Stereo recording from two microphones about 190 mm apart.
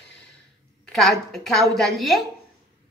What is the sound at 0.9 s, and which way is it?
A woman's voice, centre (ahead or behind).